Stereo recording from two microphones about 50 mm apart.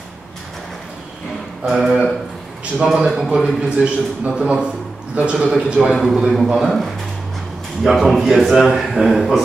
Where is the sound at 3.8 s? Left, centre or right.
Right.